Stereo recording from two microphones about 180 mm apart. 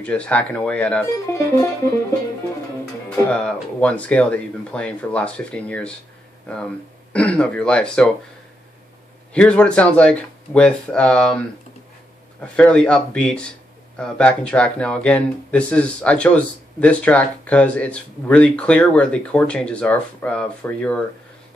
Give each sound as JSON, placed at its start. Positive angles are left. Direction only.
{"t": 0.0, "sound": "speech", "side_deg": 5}
{"t": 3.2, "sound": "speech", "side_deg": 5}
{"t": 9.3, "sound": "speech", "side_deg": 5}